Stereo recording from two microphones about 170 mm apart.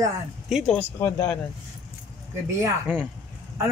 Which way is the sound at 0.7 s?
15° left (ahead or behind).